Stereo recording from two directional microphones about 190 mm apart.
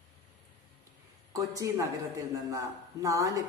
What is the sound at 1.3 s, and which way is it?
A man's voice, 15° right (ahead or behind).